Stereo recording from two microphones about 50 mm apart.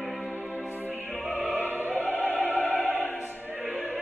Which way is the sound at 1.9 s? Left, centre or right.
Left.